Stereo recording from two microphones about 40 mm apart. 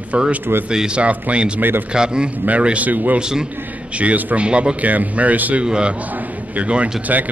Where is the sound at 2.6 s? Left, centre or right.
Right.